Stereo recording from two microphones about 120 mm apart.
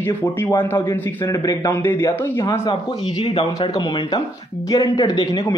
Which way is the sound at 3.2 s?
55° left (ahead or behind).